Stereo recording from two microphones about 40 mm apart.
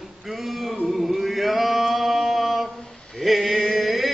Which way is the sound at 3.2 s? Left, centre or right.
Centre.